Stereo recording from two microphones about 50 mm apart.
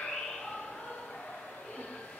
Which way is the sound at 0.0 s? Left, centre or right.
Centre.